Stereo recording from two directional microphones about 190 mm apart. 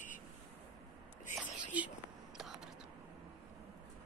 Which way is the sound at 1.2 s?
10° right (ahead or behind).